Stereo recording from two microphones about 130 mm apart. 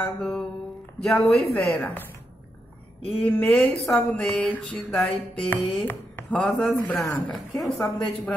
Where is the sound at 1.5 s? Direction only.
10° left (ahead or behind).